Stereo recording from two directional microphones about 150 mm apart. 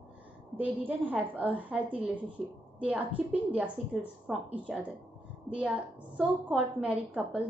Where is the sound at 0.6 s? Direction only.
10° right (ahead or behind).